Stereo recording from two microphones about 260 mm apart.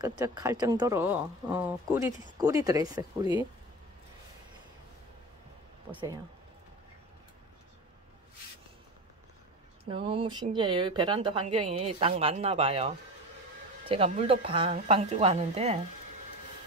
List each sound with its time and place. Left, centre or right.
0.0 s speech: centre
5.9 s speech: centre
9.8 s speech: right